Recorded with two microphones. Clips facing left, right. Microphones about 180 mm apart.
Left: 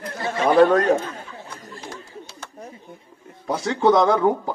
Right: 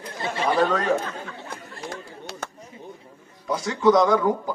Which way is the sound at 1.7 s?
70° right (ahead or behind).